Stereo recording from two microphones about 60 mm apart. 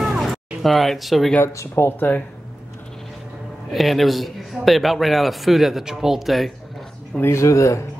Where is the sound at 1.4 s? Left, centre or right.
Left.